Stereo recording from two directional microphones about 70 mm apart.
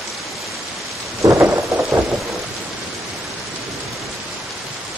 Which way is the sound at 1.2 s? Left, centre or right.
Right.